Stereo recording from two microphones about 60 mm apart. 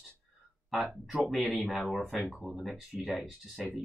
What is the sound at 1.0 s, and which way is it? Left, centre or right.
Speech, centre.